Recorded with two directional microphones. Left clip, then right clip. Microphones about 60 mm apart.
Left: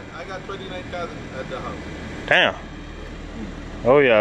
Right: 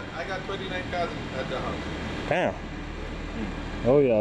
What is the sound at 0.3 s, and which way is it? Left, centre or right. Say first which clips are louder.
Speech: left 1 dB; centre.